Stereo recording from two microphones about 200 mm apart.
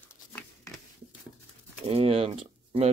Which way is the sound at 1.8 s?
30° right (ahead or behind).